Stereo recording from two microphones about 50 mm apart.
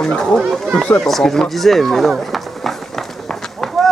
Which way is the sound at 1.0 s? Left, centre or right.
Centre.